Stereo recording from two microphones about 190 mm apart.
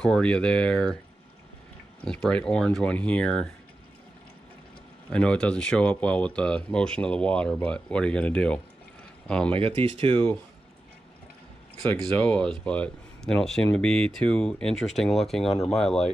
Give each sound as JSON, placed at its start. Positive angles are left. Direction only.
{"t": 0.0, "sound": "speech", "side_deg": 5}
{"t": 2.0, "sound": "speech", "side_deg": 5}
{"t": 5.1, "sound": "speech", "side_deg": 5}
{"t": 9.5, "sound": "speech", "side_deg": -25}
{"t": 12.0, "sound": "speech", "side_deg": 5}